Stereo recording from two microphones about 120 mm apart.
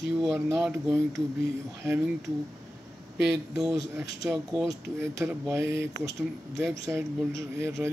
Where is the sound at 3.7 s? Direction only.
30° right (ahead or behind).